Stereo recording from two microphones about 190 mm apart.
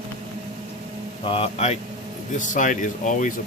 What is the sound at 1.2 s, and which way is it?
Speech, 30° left (ahead or behind).